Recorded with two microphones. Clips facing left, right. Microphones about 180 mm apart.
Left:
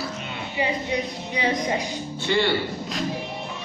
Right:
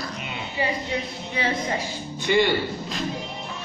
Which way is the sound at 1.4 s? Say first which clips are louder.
Left 2 dB; 15° left (ahead or behind).